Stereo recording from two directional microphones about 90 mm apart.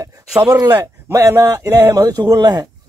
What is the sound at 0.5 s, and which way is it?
Speech, 40° right (ahead or behind).